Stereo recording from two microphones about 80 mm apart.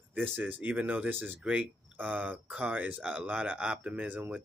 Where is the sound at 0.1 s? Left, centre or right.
Centre.